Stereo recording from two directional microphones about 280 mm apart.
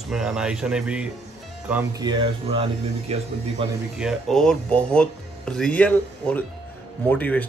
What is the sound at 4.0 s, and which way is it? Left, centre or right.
Speech, centre.